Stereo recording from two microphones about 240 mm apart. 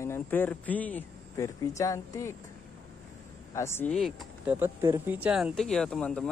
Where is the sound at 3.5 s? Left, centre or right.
Centre.